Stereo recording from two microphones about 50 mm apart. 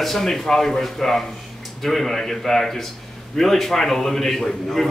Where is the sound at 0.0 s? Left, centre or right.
Centre.